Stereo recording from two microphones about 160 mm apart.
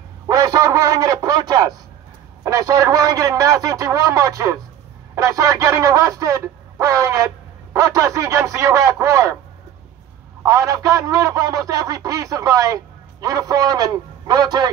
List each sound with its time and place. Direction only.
0.3 s a man's voice: 20° right (ahead or behind)
10.4 s a man's voice: 20° right (ahead or behind)